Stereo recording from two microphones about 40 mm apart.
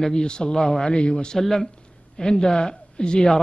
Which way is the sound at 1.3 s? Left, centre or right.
Centre.